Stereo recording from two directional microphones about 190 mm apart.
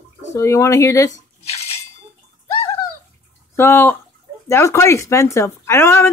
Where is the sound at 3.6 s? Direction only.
10° left (ahead or behind).